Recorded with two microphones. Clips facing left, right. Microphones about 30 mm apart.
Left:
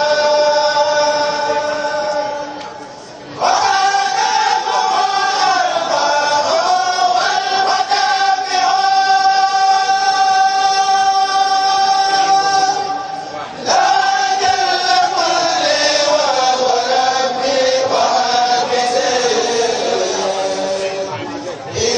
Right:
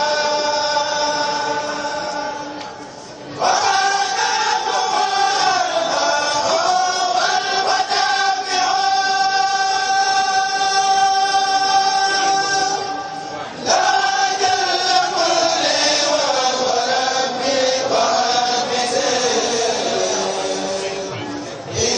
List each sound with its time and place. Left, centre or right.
0.0 s chant: centre
3.4 s choir: centre
13.7 s chant: centre